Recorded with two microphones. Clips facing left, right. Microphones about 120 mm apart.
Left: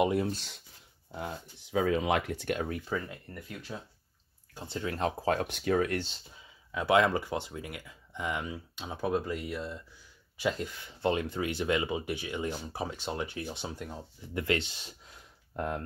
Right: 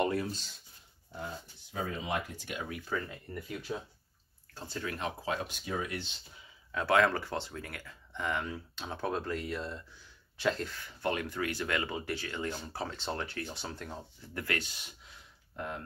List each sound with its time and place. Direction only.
0.3 s speech: 60° left (ahead or behind)
1.2 s speech: 90° left; by 2.6 s 60° left (ahead or behind)
2.9 s speech: 15° left (ahead or behind)
3.3 s speech: 5° right (ahead or behind)
4.6 s speech: 25° left (ahead or behind); by 6.0 s 60° left (ahead or behind)
6.7 s speech: 15° left (ahead or behind)
14.3 s speech: 25° left (ahead or behind)
15.5 s speech: 45° left (ahead or behind)